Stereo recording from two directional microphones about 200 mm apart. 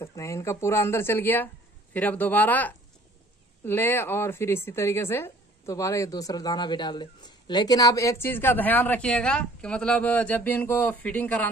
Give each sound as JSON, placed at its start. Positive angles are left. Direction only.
{"t": 0.0, "sound": "speech", "side_deg": 15}